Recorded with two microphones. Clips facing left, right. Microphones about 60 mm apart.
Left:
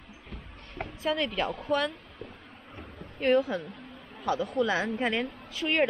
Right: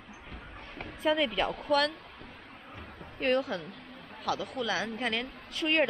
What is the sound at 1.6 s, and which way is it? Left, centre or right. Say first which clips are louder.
Speech: right 2 dB; centre.